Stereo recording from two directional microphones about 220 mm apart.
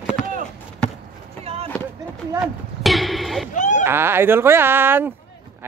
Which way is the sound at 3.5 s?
35° left (ahead or behind).